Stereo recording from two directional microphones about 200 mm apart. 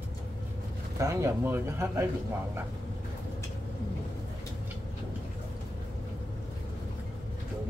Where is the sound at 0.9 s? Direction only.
15° right (ahead or behind).